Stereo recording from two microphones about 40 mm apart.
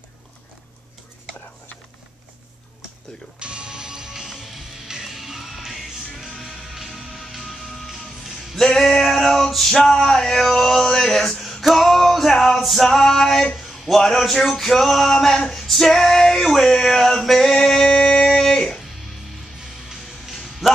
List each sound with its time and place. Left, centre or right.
3.3 s music: right; by 7.9 s centre
8.5 s male singing: centre
11.6 s music: centre
12.5 s male singing: centre
13.6 s a sound: centre
14.5 s male singing: centre
17.6 s music: centre
20.3 s a sound: centre